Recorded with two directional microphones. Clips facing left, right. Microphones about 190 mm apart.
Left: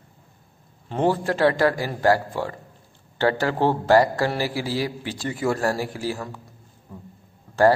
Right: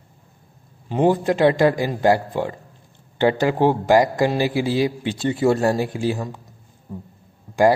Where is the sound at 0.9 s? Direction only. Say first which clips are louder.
Right 4 dB; 15° right (ahead or behind).